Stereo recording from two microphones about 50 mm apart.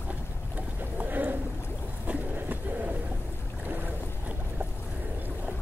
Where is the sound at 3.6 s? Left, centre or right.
Right.